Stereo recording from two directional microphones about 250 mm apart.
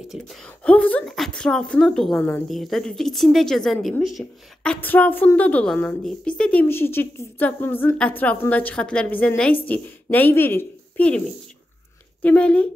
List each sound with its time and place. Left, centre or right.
0.1 s a woman's voice: centre